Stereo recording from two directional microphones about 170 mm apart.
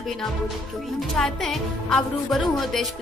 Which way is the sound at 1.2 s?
5° left (ahead or behind).